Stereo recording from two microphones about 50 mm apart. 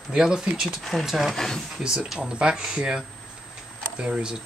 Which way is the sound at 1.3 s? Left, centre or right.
Centre.